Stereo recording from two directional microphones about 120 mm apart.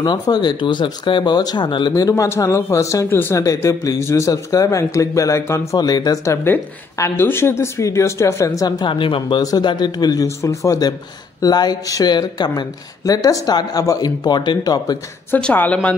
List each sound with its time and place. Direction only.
0.0 s speech: 35° left (ahead or behind)
9.4 s speech: 35° left (ahead or behind)
15.3 s speech: 15° left (ahead or behind)